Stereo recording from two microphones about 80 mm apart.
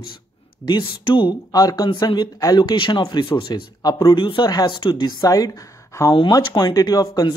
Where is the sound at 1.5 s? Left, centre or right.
Left.